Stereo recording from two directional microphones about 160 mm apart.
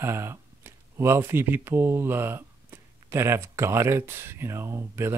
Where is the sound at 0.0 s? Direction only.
15° right (ahead or behind).